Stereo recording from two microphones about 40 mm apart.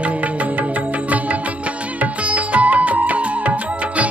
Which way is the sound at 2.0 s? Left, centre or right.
Right.